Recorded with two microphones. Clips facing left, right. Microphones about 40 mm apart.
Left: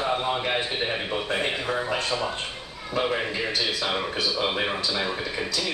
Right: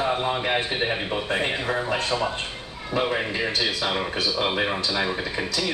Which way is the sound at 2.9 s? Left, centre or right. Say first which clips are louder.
Right 1 dB; centre.